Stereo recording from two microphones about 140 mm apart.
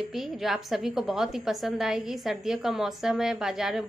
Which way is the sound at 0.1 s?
Centre (ahead or behind).